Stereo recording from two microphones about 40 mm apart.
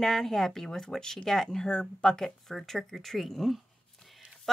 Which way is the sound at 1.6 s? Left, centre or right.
Left.